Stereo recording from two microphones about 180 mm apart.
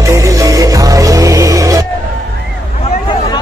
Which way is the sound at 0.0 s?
20° right (ahead or behind).